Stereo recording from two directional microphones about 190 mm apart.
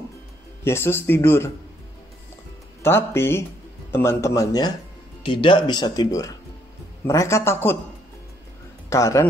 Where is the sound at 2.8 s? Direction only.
10° left (ahead or behind).